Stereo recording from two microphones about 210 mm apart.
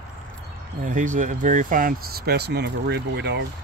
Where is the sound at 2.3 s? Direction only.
50° right (ahead or behind).